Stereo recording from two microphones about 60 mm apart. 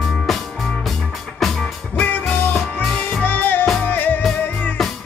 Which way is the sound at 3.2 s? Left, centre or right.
Left.